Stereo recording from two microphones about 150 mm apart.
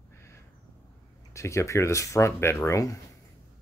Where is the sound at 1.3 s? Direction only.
20° left (ahead or behind).